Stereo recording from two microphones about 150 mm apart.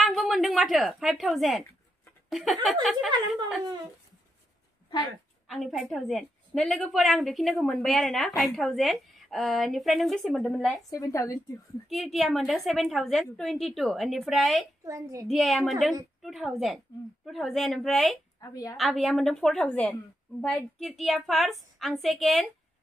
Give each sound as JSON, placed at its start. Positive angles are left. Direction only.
{"t": 0.0, "sound": "a woman's voice", "side_deg": 0}
{"t": 5.5, "sound": "a woman's voice", "side_deg": 0}
{"t": 10.9, "sound": "a woman's voice", "side_deg": 20}
{"t": 11.9, "sound": "a woman's voice", "side_deg": 0}
{"t": 14.9, "sound": "a child's voice", "side_deg": -20}
{"t": 15.2, "sound": "a woman's voice", "side_deg": 0}
{"t": 18.4, "sound": "a woman's voice", "side_deg": 25}
{"t": 18.8, "sound": "a woman's voice", "side_deg": 0}